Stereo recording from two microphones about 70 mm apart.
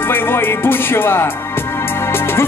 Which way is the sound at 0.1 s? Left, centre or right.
Left.